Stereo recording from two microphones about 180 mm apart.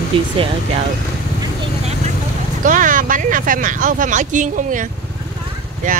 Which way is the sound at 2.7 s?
45° right (ahead or behind).